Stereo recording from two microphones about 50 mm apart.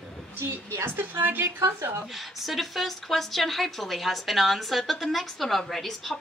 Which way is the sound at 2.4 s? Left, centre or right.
Centre.